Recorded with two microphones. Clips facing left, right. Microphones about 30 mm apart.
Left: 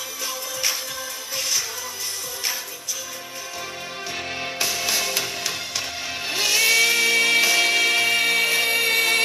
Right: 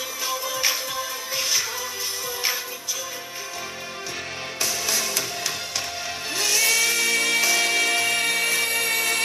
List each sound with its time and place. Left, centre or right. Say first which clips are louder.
0.3 s music: right 3 dB; centre
4.6 s music: left 1 dB; centre
6.3 s music: left 3 dB; left